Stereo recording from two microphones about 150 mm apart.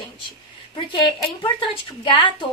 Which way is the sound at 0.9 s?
30° left (ahead or behind).